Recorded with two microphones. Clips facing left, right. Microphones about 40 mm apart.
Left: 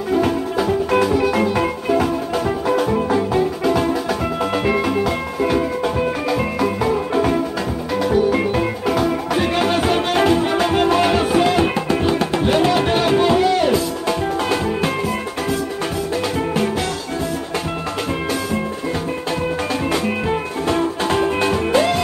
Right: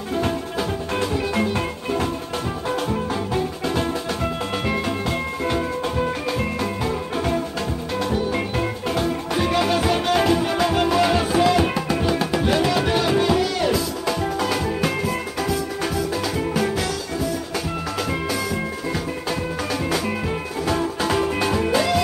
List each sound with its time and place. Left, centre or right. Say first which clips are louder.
0.2 s music: left 5 dB; left
1.5 s music: left 6 dB; left
6.9 s music: left 6 dB; centre
9.3 s music: even; left
19.9 s music: left 4 dB; left